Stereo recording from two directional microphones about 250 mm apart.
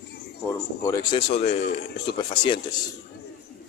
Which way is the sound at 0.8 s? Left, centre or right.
Centre.